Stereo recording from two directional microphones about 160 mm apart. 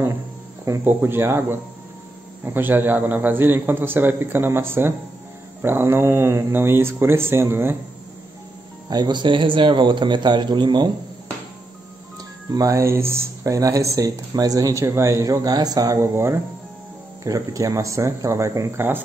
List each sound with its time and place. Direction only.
0.7 s a man's voice: 15° right (ahead or behind)
8.9 s speech: 25° right (ahead or behind)
12.5 s speech: 20° right (ahead or behind)